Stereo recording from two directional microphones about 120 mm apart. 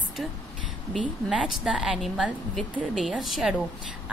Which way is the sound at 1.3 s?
5° right (ahead or behind).